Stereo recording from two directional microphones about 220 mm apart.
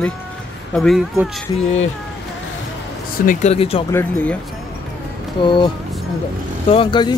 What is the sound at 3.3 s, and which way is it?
Speech, 30° left (ahead or behind).